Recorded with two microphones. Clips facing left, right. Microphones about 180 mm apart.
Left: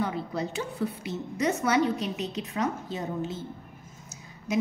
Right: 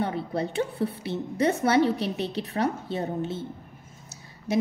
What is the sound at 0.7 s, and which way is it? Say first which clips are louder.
Speech: right 2 dB; 30° right (ahead or behind).